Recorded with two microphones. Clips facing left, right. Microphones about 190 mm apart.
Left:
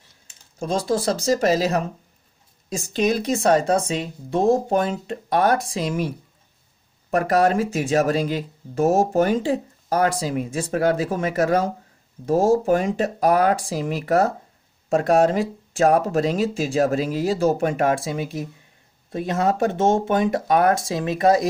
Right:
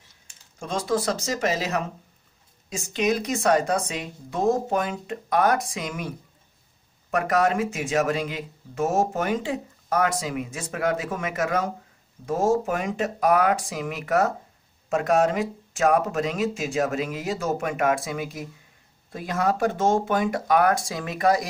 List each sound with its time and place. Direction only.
0.6 s speech: 35° left (ahead or behind)